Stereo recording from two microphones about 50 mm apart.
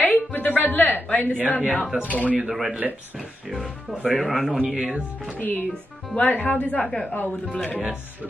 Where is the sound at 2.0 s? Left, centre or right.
Left.